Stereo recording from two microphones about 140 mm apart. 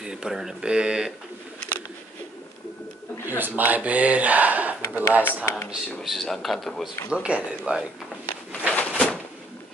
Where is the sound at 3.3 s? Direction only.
15° right (ahead or behind).